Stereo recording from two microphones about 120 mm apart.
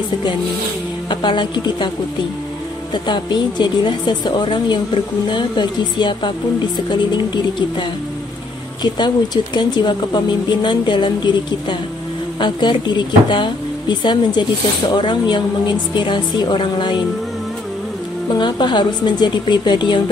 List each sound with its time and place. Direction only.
1.2 s speech: 40° left (ahead or behind)
2.9 s speech: 40° left (ahead or behind)
8.9 s speech: 35° left (ahead or behind)
12.4 s speech: 40° left (ahead or behind)
18.3 s speech: 40° left (ahead or behind)